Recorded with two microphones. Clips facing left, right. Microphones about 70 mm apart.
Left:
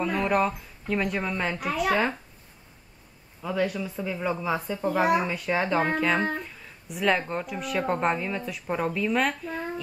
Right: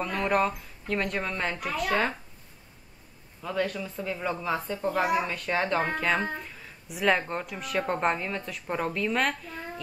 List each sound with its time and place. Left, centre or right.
0.0 s speech: centre
3.4 s speech: centre